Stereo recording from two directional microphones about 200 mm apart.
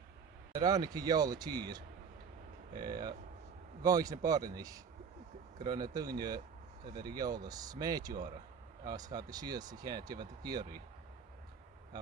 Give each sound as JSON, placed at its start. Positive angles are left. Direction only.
{"t": 0.6, "sound": "speech", "side_deg": -20}
{"t": 2.8, "sound": "speech", "side_deg": -20}